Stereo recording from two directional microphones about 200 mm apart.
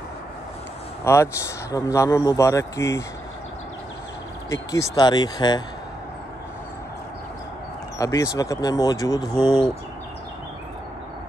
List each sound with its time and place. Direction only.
1.0 s a man's voice: 15° left (ahead or behind)
4.5 s speech: 15° left (ahead or behind)
8.0 s a man's voice: 15° left (ahead or behind)